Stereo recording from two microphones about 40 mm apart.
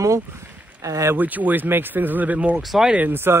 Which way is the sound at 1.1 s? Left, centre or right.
Right.